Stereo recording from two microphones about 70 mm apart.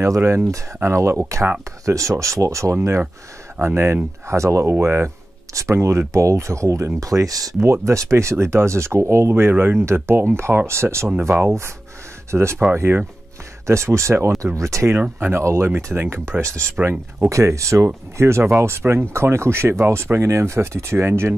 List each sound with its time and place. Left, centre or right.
0.0 s speech: right
5.5 s speech: right
7.7 s speech: right
9.3 s speech: right
11.1 s speech: right
14.9 s speech: right
15.4 s speech: right
15.7 s speech: right
16.8 s speech: centre
17.3 s speech: right